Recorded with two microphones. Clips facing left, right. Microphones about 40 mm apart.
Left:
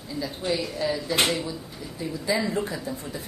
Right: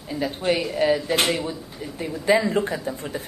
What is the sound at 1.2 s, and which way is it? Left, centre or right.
Speech, centre.